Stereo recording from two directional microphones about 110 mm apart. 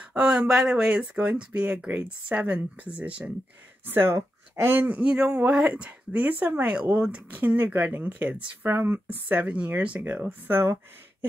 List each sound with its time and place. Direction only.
0.0 s speech: 10° right (ahead or behind)